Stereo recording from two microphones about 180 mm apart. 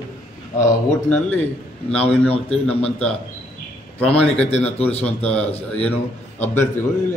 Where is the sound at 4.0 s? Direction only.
5° left (ahead or behind).